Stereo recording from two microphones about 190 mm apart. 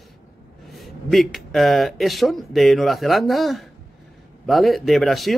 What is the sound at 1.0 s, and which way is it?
Speech, centre (ahead or behind).